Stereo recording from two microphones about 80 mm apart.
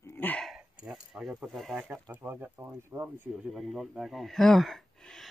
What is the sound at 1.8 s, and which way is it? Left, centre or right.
Speech, centre.